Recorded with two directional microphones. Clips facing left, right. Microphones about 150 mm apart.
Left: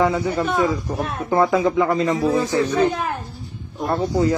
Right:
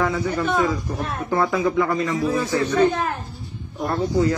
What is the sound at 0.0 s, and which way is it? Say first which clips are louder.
A man's voice: left 3 dB; 20° left (ahead or behind).